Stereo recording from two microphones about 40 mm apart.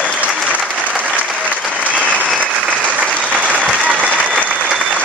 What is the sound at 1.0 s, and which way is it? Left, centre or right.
Applause, right.